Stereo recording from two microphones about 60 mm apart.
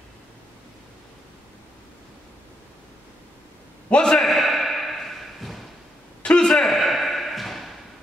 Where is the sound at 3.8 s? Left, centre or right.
Centre.